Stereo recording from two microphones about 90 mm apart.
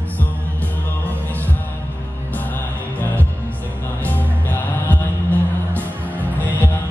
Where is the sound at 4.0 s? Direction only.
20° left (ahead or behind).